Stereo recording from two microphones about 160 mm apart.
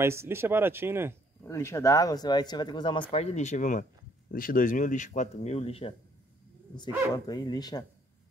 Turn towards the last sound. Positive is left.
turn(degrees=25)  # may be behind; listen again after turning